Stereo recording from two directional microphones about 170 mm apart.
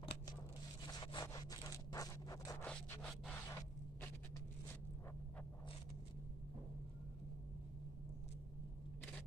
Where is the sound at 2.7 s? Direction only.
5° left (ahead or behind).